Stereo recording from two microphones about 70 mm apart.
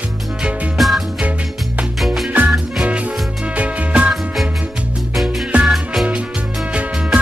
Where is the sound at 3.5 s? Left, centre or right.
Centre.